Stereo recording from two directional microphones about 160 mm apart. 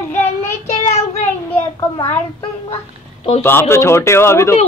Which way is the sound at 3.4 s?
15° left (ahead or behind).